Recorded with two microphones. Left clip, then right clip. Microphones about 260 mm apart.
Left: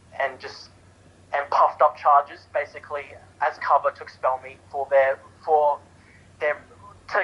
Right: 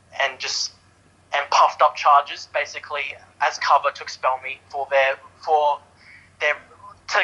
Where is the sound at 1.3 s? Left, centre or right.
Centre.